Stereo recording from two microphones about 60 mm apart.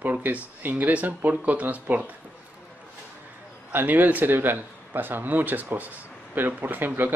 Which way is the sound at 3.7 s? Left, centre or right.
Right.